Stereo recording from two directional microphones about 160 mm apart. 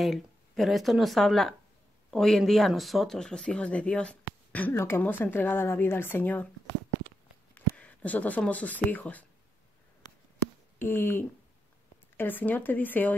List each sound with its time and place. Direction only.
0.0 s speech: centre (ahead or behind)
7.5 s speech: 10° left (ahead or behind)
10.0 s a sound: 15° left (ahead or behind)
12.2 s speech: 10° left (ahead or behind)